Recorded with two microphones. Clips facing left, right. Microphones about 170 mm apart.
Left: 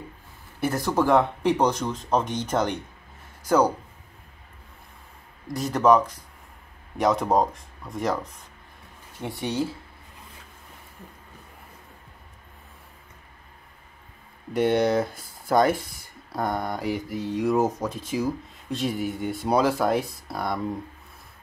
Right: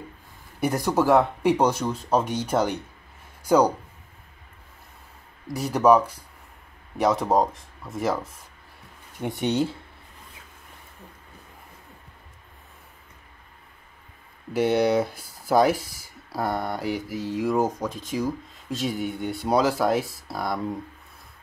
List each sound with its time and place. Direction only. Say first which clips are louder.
0.6 s speech: right 1 dB; 15° right (ahead or behind)
5.5 s speech: right 1 dB; 10° right (ahead or behind)
7.0 s mantra: even; centre (ahead or behind)
9.2 s speech: right 3 dB; 20° right (ahead or behind)
14.5 s mantra: even; 5° right (ahead or behind)